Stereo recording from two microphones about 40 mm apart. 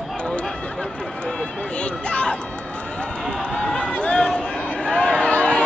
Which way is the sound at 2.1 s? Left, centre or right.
Left.